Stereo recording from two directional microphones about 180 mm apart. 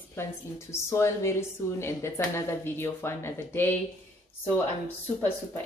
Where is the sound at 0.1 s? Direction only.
15° left (ahead or behind).